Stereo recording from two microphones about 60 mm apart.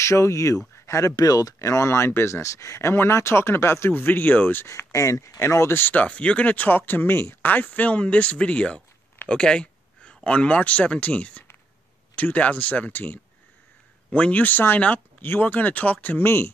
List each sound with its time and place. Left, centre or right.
0.0 s speech: left
1.7 s speech: left
2.9 s speech: left
4.6 s speech: left
5.4 s speech: left
5.9 s speech: left
6.9 s speech: left
7.4 s speech: left
16.3 s speech: left